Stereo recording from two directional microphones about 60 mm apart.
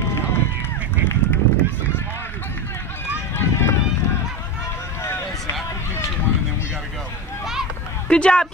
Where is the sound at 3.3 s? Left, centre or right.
Left.